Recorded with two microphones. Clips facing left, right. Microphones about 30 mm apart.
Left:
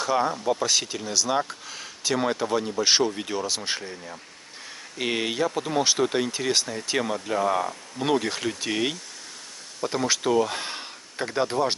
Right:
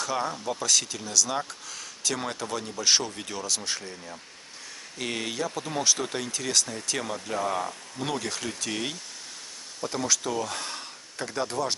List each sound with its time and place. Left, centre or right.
0.0 s speech: centre
3.9 s speech: centre
4.9 s speech: left